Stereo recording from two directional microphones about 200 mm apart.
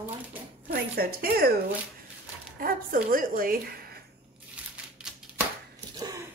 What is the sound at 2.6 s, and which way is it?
Speech, 45° right (ahead or behind).